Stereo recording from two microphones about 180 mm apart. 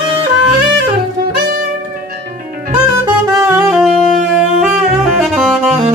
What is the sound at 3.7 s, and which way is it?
Saxophone, 5° right (ahead or behind).